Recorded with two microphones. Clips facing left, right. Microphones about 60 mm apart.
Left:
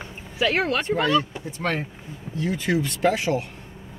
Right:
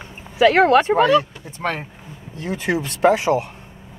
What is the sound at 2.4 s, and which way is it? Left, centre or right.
Speech, right.